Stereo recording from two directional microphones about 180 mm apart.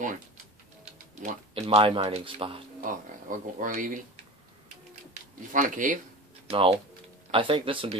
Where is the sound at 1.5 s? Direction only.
30° right (ahead or behind).